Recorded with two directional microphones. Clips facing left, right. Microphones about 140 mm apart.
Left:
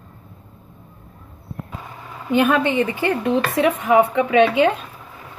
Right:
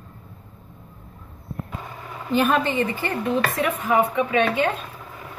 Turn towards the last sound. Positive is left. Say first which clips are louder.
# left 6 dB
turn(degrees=90)